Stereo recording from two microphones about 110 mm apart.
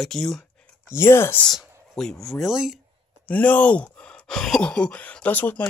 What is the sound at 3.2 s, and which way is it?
Speech, 15° left (ahead or behind).